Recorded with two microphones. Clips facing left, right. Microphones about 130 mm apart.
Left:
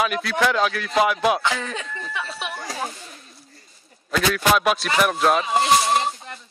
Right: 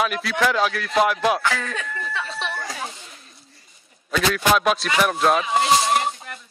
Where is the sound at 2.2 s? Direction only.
10° left (ahead or behind).